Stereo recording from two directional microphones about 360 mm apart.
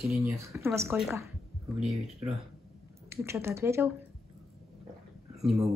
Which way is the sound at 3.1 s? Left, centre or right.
Centre.